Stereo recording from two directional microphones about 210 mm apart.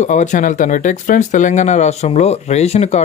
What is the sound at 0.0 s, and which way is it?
Speech, 35° left (ahead or behind).